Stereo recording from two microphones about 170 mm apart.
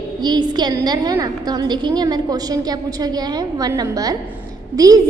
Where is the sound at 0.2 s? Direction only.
25° right (ahead or behind).